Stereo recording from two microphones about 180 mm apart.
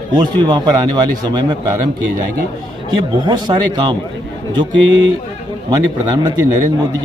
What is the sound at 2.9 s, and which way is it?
A man's voice, 25° right (ahead or behind).